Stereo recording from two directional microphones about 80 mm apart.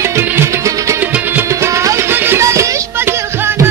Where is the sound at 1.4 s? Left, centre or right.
Right.